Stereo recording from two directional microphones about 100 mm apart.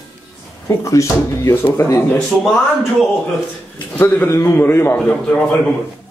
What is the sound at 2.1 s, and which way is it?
Speech, 5° left (ahead or behind).